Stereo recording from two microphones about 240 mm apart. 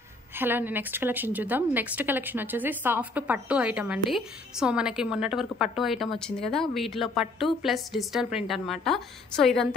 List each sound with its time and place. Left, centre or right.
0.4 s a woman's voice: centre